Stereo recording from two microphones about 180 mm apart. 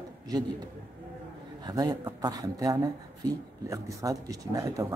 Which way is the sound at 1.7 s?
20° right (ahead or behind).